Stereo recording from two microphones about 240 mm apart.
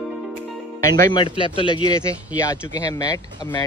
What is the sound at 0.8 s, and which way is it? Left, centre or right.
Speech, left.